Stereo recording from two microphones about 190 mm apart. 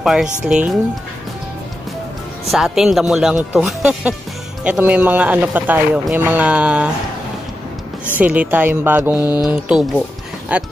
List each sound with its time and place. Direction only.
0.0 s speech: centre (ahead or behind)
2.5 s speech: centre (ahead or behind)
8.0 s speech: 5° right (ahead or behind)
9.3 s speech: 20° left (ahead or behind)
9.7 s speech: centre (ahead or behind)